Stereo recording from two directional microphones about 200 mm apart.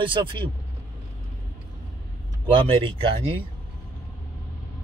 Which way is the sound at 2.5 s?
25° right (ahead or behind).